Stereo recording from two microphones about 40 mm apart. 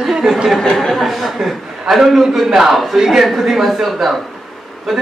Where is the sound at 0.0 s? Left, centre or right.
Centre.